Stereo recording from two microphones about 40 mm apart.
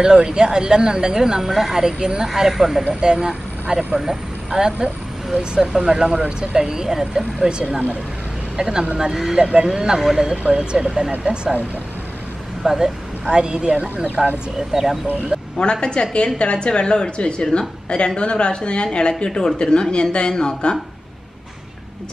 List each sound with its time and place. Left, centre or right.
0.0 s speech: right
2.2 s speech: centre
2.9 s speech: right
4.0 s speech: centre
5.3 s speech: right
6.1 s speech: right
6.7 s speech: centre
7.4 s speech: right
9.4 s speech: right
9.7 s speech: centre
12.6 s speech: centre
13.7 s speech: right
14.7 s speech: centre
15.6 s a woman's voice: left